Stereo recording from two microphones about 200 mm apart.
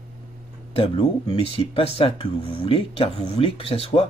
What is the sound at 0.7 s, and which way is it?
Speech, 25° left (ahead or behind).